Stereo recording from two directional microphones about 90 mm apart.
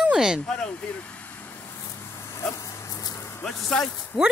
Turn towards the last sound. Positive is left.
turn(degrees=5)  # may be behind; listen again after turning